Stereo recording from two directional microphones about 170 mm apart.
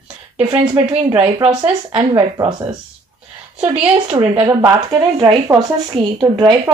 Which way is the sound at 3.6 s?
25° right (ahead or behind).